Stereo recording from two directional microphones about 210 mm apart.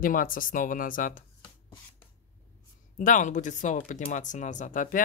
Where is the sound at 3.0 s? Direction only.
35° left (ahead or behind).